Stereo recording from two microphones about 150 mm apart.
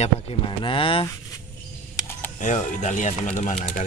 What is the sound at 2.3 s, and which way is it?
Speech, 55° left (ahead or behind).